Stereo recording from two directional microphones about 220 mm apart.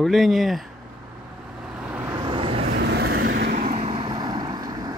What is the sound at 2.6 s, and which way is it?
Vehicle, 50° right (ahead or behind).